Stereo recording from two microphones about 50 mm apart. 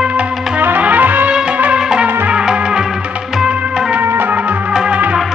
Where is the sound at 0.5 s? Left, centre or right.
Right.